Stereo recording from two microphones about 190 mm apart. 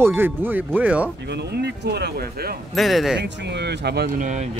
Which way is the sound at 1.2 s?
60° right (ahead or behind).